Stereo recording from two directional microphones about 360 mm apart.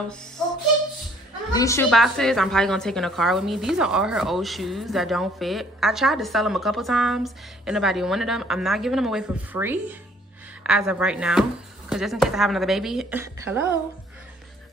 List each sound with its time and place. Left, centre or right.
1.5 s a woman's voice: centre